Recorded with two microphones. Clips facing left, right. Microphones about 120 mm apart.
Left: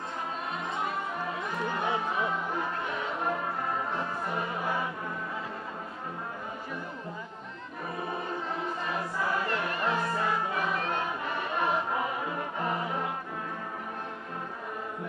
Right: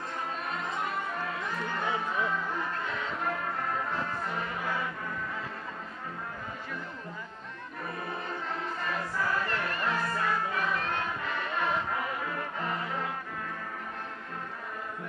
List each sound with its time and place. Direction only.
1.2 s music: 15° left (ahead or behind)
8.8 s music: 20° left (ahead or behind)